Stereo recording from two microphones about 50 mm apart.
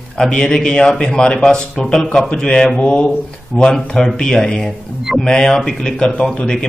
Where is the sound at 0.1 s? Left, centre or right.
Centre.